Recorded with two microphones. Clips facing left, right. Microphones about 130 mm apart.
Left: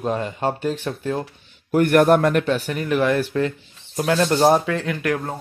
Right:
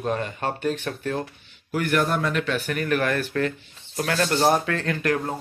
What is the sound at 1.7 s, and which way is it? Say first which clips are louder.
Speech: left 8 dB; 55° left (ahead or behind).